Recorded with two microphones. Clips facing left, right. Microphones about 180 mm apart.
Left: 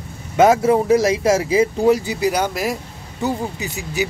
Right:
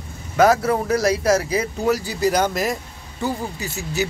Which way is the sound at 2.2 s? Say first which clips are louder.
Even; 10° left (ahead or behind).